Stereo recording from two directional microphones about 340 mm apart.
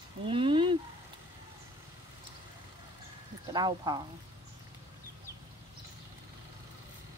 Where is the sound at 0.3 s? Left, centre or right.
Centre.